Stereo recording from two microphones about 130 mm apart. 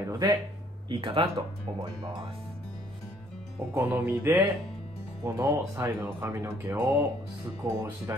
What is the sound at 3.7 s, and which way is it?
Music, 15° right (ahead or behind).